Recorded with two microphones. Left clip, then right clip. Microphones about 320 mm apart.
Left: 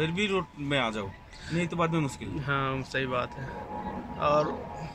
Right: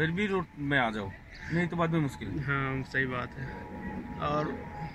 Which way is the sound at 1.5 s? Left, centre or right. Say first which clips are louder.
Left 1 dB; left.